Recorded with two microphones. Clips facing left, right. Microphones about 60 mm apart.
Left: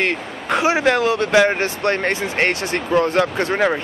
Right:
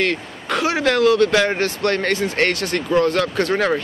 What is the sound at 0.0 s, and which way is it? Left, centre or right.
Speech, left.